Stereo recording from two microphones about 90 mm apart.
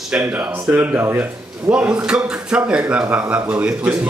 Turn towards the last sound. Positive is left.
turn(degrees=-10)  # may be behind; listen again after turning